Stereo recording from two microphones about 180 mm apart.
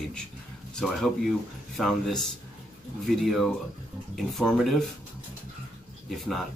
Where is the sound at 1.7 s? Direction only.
Centre (ahead or behind).